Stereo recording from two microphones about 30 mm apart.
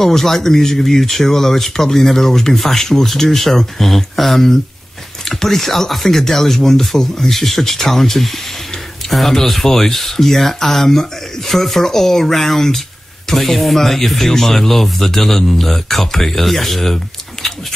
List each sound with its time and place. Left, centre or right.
0.0 s speech: centre